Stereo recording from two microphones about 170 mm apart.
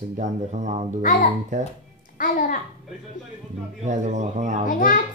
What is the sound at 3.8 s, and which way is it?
Speech, 45° right (ahead or behind).